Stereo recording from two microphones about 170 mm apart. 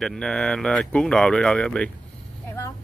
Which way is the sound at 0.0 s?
Centre (ahead or behind).